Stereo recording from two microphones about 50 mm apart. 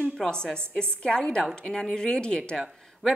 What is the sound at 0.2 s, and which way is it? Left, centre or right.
A woman's voice, centre.